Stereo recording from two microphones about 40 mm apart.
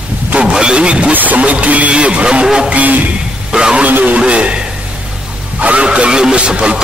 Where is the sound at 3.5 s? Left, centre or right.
Centre.